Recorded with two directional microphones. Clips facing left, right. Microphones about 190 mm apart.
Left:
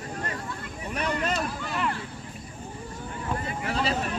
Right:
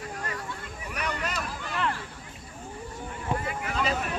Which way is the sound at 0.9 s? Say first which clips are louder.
Left 5 dB; 30° left (ahead or behind).